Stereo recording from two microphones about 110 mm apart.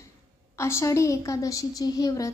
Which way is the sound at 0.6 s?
25° left (ahead or behind).